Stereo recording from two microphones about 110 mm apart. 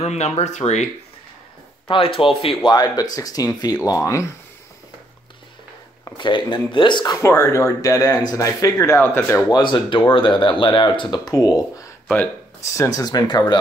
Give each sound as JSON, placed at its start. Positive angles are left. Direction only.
{"t": 0.0, "sound": "speech", "side_deg": 90}
{"t": 1.9, "sound": "speech", "side_deg": 55}
{"t": 6.1, "sound": "speech", "side_deg": 45}
{"t": 7.2, "sound": "speech", "side_deg": 25}
{"t": 9.5, "sound": "speech", "side_deg": 40}